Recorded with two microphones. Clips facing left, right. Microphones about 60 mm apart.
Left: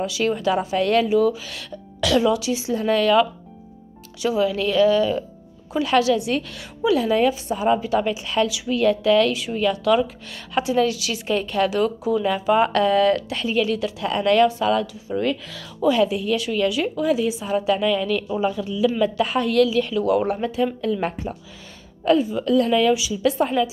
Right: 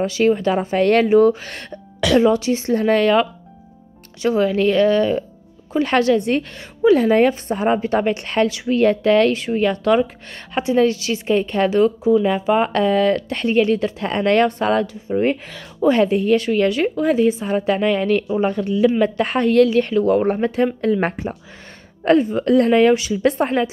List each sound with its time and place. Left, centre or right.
0.0 s speech: right
2.1 s speech: right
8.1 s a woman's voice: right
8.4 s a woman's voice: right
13.3 s speech: right
18.4 s speech: right
18.9 s speech: right